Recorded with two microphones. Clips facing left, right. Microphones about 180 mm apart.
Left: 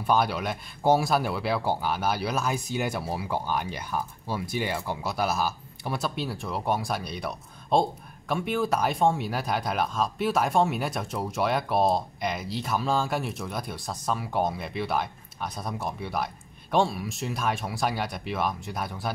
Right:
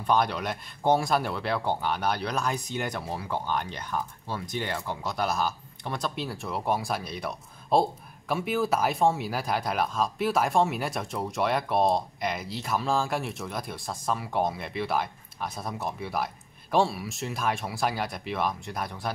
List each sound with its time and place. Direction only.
0.0 s speech: 5° left (ahead or behind)